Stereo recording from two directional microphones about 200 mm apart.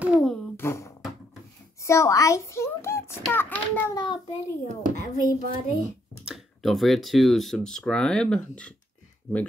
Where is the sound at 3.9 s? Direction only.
20° left (ahead or behind).